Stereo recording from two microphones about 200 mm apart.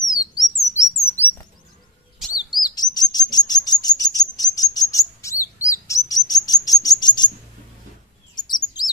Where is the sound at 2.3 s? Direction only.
20° left (ahead or behind).